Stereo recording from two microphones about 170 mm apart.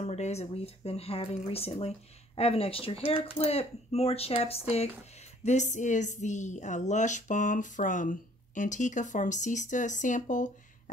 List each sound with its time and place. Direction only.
0.0 s a woman's voice: 40° left (ahead or behind)